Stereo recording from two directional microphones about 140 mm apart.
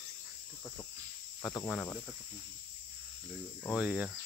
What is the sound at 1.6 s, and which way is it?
Speech, 10° left (ahead or behind).